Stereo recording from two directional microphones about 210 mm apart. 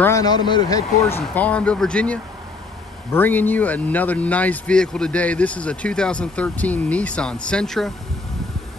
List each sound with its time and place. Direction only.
0.0 s a man's voice: 15° left (ahead or behind)